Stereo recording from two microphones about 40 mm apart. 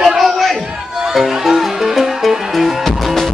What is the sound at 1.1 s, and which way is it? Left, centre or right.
Music, centre.